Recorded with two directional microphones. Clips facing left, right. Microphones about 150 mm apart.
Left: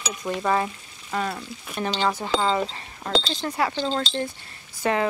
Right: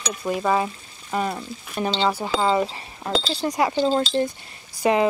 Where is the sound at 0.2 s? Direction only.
10° right (ahead or behind).